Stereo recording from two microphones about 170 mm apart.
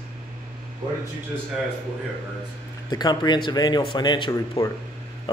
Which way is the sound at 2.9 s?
25° left (ahead or behind).